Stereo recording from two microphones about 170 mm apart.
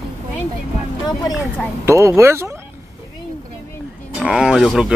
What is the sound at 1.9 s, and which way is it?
Speech, 15° right (ahead or behind).